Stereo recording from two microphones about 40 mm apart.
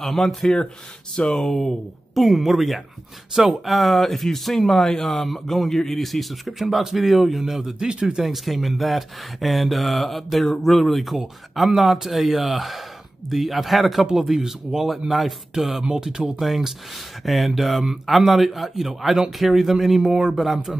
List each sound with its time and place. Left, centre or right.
0.0 s speech: centre
1.5 s speech: centre
8.2 s speech: centre
16.0 s speech: centre
16.3 s speech: centre